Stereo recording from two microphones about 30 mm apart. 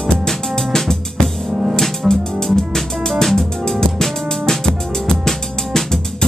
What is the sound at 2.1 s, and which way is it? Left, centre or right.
Music, centre.